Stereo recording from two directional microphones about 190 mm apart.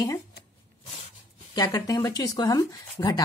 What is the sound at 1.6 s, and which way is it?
A woman's voice, 15° left (ahead or behind).